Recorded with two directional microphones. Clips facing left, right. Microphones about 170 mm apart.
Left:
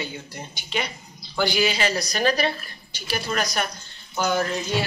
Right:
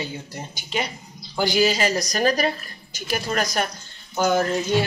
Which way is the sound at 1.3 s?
40° right (ahead or behind).